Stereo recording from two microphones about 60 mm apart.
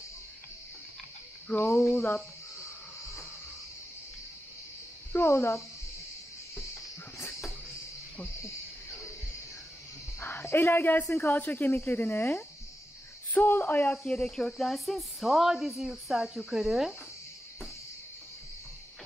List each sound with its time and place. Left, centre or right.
1.6 s speech: left
5.1 s speech: left
7.2 s cricket: left
10.2 s speech: left
11.3 s speech: left
14.0 s speech: centre